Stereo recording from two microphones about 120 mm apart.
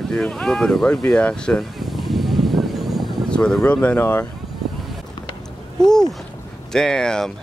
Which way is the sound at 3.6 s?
10° left (ahead or behind).